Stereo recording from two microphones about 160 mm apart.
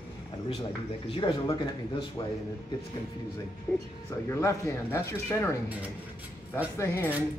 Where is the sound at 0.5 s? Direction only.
35° left (ahead or behind).